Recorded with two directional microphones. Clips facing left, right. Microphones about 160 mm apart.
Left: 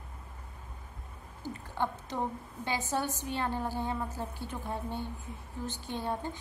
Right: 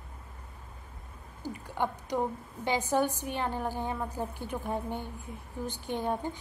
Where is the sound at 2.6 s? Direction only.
15° right (ahead or behind).